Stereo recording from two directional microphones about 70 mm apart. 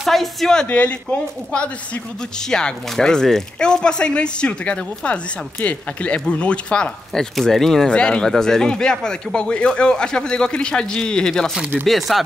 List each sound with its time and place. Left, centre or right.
0.0 s speech: centre
0.7 s speech: left
2.5 s speech: centre
11.7 s chopping: centre
12.1 s speech: centre